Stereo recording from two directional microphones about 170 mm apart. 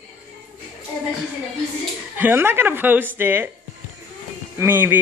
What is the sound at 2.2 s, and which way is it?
Speech, 10° right (ahead or behind).